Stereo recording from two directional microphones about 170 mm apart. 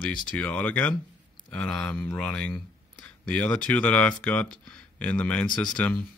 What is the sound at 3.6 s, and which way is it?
Speech, 10° left (ahead or behind).